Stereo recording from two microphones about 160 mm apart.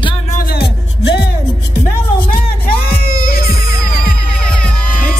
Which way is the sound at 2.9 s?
70° left (ahead or behind).